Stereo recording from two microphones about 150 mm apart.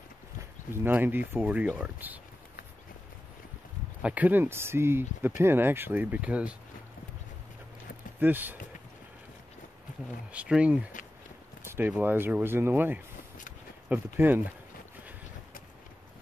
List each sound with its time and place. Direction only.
0.7 s speech: 15° right (ahead or behind)
4.0 s speech: 10° right (ahead or behind)
8.2 s speech: 10° right (ahead or behind)
10.3 s speech: 10° right (ahead or behind)
11.6 s a sound: 15° right (ahead or behind)
11.9 s speech: 10° right (ahead or behind)